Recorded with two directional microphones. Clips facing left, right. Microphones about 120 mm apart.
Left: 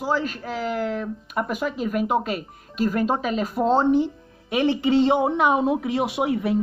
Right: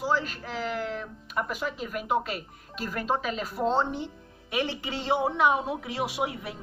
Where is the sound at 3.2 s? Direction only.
50° left (ahead or behind).